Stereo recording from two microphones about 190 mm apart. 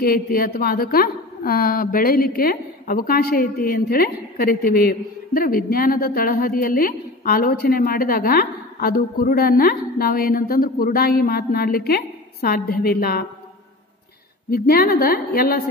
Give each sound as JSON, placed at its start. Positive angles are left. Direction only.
{"t": 0.0, "sound": "a woman's voice", "side_deg": 50}
{"t": 14.5, "sound": "a woman's voice", "side_deg": 55}